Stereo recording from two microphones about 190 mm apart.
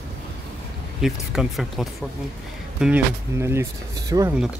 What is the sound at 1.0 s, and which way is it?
Speech, 5° right (ahead or behind).